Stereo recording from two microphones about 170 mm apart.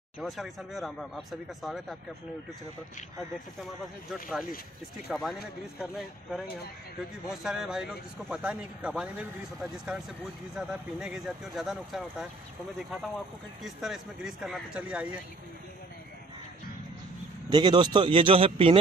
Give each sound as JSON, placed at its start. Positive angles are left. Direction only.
{"t": 0.2, "sound": "a man's voice", "side_deg": 0}
{"t": 3.6, "sound": "a man's voice", "side_deg": 0}
{"t": 17.5, "sound": "a man's voice", "side_deg": -25}